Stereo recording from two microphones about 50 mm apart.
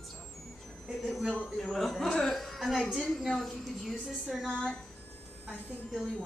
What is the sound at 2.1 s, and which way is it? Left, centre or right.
Music, centre.